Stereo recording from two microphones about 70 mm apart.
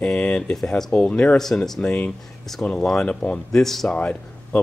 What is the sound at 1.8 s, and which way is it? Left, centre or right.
Speech, centre.